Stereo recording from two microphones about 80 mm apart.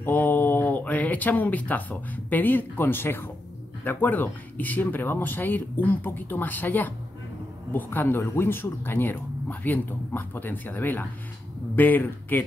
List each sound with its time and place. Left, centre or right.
0.0 s speech: left